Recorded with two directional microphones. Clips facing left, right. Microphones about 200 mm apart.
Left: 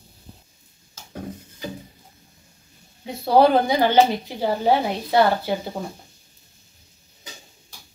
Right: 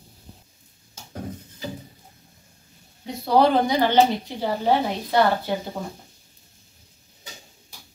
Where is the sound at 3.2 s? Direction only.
10° left (ahead or behind).